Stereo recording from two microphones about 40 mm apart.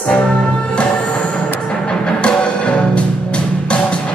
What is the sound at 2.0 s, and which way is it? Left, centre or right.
Music, left.